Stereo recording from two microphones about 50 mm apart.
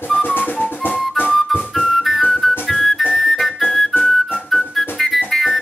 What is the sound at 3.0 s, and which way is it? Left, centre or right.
Music, centre.